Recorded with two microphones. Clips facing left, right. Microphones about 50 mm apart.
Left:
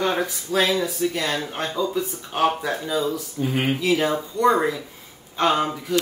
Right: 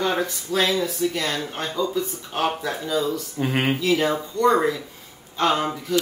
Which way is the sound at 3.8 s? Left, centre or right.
Centre.